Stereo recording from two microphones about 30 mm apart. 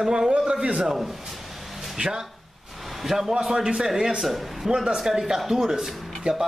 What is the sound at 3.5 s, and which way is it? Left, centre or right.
Speech, right.